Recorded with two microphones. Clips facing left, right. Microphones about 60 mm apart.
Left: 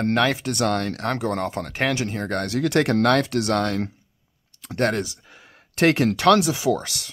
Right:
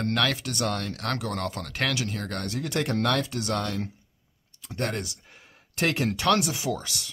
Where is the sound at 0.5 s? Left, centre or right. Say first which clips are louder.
Left 6 dB; left.